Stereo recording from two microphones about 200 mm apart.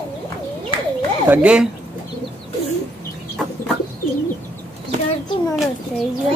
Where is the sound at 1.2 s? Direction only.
5° right (ahead or behind).